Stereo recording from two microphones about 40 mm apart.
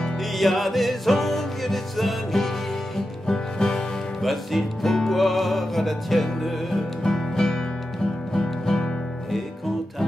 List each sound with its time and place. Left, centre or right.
0.4 s music: centre
4.2 s speech: centre
4.9 s music: centre